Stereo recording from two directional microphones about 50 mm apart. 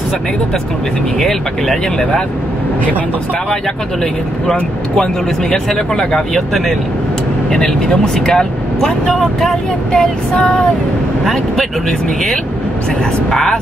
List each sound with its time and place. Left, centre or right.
1.2 s speech: centre
4.0 s speech: centre
10.3 s speech: centre
13.3 s speech: centre